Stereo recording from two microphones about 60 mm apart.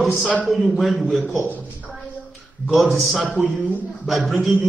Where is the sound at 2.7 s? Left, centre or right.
Centre.